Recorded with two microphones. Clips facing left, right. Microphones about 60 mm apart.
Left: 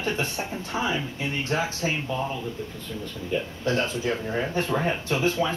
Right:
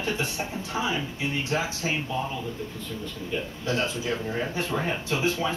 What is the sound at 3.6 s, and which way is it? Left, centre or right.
Speech, left.